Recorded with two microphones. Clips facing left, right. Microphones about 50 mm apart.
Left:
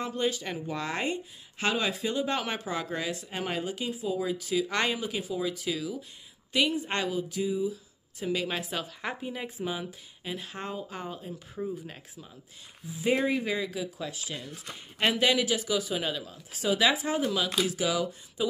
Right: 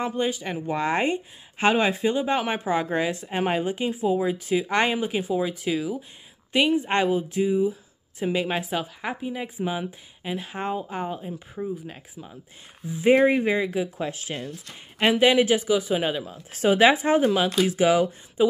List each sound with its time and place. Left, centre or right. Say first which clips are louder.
0.0 s speech: right 4 dB; centre
0.6 s speech: right 8 dB; right
8.8 s speech: right 4 dB; centre
9.6 s speech: right 5 dB; right
13.0 s speech: right 9 dB; right
15.0 s speech: right 6 dB; right
15.3 s speech: right 7 dB; right
16.5 s speech: right 8 dB; right
18.4 s speech: right 9 dB; right